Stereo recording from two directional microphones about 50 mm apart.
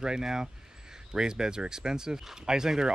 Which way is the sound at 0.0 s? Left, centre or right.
Centre.